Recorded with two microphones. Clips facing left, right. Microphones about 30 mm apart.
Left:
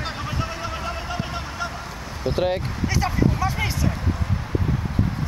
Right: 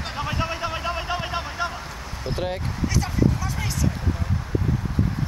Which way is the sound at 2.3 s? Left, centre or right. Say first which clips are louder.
Left 5 dB; centre.